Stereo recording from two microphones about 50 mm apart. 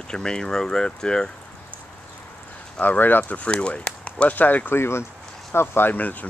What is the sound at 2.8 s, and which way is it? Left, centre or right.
Speech, left.